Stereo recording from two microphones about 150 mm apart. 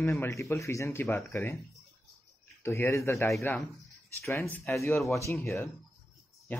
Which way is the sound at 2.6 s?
15° left (ahead or behind).